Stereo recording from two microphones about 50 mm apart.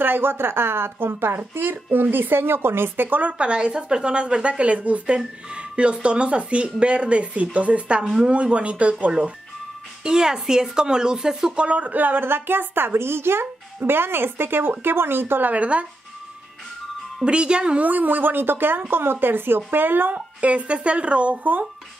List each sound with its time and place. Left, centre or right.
0.0 s a woman's voice: right
10.0 s speech: centre
11.6 s a woman's voice: right
15.5 s speech: right
17.2 s speech: centre
17.8 s a woman's voice: right
20.2 s speech: right